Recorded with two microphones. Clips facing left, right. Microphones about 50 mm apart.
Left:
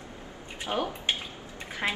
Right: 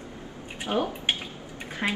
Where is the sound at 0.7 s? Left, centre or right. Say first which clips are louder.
Right 3 dB; right.